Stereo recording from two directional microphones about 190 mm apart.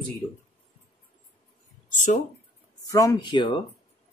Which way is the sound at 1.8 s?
40° left (ahead or behind).